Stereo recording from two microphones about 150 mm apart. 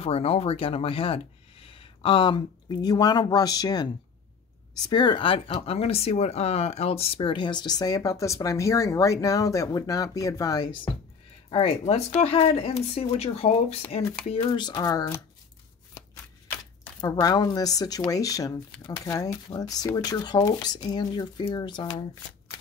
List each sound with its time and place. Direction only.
0.0 s speech: 40° left (ahead or behind); by 10.8 s 25° left (ahead or behind)
11.5 s speech: 40° left (ahead or behind); by 15.1 s 25° left (ahead or behind)
17.0 s speech: 25° left (ahead or behind)